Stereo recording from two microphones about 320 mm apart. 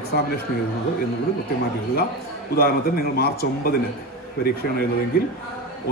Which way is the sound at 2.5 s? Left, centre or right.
Left.